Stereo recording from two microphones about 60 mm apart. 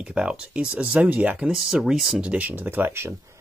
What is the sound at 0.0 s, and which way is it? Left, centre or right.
Speech, centre.